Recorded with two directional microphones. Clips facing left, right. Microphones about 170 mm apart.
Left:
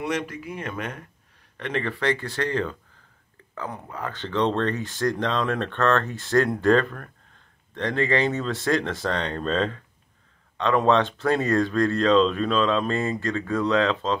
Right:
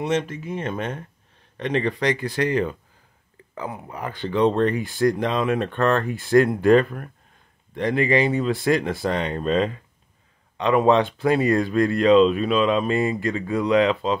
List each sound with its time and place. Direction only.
0.0 s speech: 25° right (ahead or behind)